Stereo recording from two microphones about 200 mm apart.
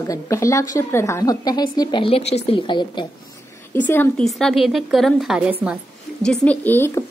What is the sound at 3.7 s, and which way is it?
A woman's voice, 10° left (ahead or behind).